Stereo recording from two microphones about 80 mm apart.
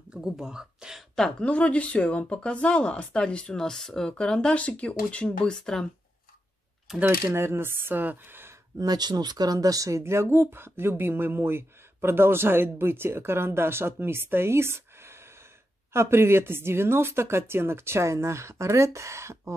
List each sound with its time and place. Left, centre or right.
0.1 s speech: centre
1.1 s speech: centre
6.9 s speech: centre
7.3 s speech: right
8.7 s speech: right